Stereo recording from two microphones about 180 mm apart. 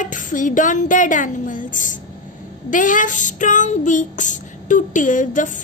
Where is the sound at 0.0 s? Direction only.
45° left (ahead or behind).